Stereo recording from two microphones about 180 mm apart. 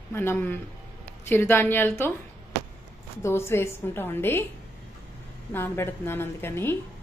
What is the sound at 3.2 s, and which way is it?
A woman's voice, 15° left (ahead or behind).